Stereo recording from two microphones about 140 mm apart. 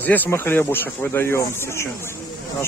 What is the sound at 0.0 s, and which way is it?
Speech, 15° left (ahead or behind).